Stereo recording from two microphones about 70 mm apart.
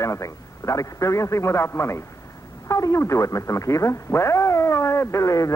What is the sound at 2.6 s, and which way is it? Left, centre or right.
Speech, left.